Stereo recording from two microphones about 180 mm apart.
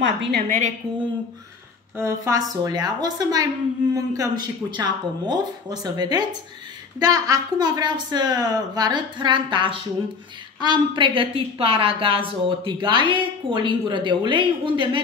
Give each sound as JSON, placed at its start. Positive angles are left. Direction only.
{"t": 0.0, "sound": "a woman's voice", "side_deg": -80}
{"t": 0.5, "sound": "a woman's voice", "side_deg": -40}
{"t": 2.0, "sound": "a woman's voice", "side_deg": -15}